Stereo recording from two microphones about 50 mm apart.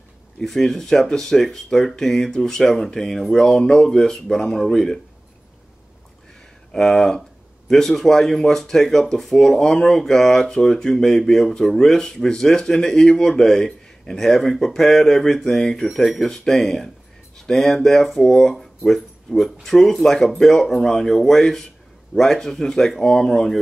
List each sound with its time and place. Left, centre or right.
0.4 s speech: centre
6.8 s speech: centre